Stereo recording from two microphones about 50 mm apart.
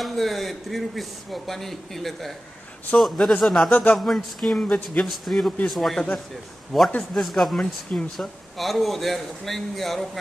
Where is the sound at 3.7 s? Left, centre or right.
Left.